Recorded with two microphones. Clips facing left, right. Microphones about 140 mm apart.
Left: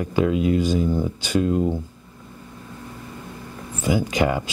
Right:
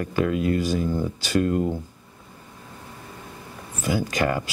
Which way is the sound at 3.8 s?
20° left (ahead or behind).